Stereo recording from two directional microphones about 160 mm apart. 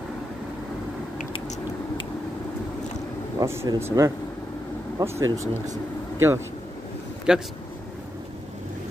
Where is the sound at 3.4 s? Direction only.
15° right (ahead or behind).